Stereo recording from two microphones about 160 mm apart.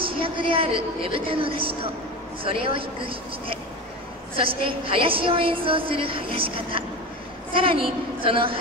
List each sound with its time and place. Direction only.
0.0 s a woman's voice: 35° right (ahead or behind)
4.4 s a woman's voice: 35° right (ahead or behind)